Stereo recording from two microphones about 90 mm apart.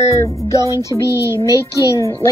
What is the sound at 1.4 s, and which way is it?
Speech, 35° left (ahead or behind).